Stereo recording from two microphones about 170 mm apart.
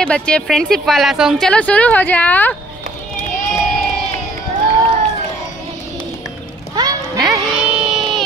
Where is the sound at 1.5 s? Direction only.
10° left (ahead or behind).